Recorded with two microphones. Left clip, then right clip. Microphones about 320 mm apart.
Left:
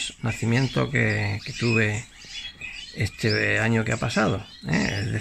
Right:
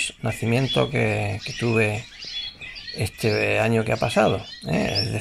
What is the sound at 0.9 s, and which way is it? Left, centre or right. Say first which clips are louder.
Speech: right 1 dB; right.